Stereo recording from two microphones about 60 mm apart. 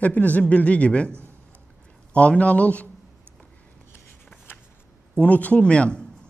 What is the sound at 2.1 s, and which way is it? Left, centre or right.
Speech, left.